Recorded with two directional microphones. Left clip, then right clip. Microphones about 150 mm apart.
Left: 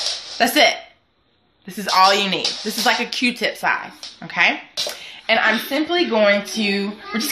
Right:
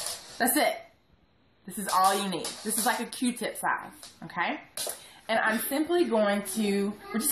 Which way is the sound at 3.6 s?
70° left (ahead or behind).